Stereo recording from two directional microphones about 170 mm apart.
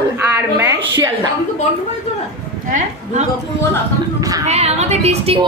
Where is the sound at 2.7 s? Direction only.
45° right (ahead or behind).